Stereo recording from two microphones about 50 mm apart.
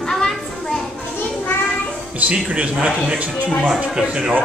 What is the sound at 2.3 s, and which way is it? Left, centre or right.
A man's voice, right.